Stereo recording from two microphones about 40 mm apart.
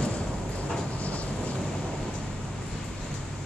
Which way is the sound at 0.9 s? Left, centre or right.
Left.